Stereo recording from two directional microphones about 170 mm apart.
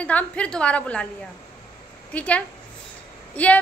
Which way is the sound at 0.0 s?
10° left (ahead or behind).